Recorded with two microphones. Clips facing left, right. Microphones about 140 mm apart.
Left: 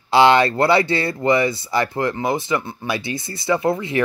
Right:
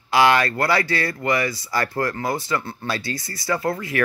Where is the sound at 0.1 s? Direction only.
25° left (ahead or behind).